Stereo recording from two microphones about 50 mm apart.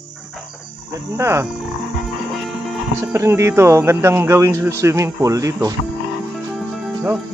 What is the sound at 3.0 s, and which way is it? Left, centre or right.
Speech, right.